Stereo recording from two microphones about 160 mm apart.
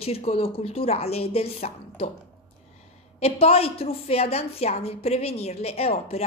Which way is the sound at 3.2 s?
40° left (ahead or behind).